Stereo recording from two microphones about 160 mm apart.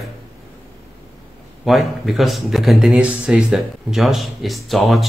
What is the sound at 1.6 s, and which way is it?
A man's voice, centre (ahead or behind).